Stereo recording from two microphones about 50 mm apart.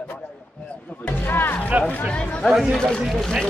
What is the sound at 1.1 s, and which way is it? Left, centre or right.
Speech, left.